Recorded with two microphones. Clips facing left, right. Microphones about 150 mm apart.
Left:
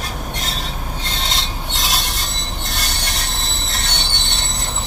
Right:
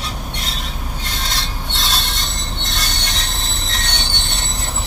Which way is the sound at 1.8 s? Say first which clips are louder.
Even; 10° left (ahead or behind).